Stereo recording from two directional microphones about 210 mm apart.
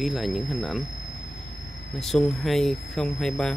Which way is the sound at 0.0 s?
Centre (ahead or behind).